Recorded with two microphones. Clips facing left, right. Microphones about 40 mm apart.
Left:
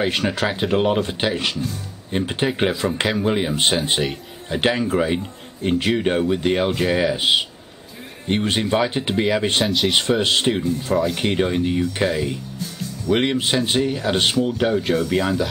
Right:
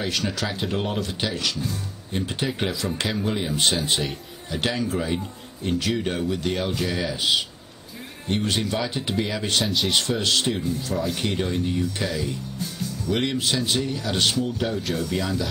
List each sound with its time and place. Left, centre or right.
0.0 s speech: left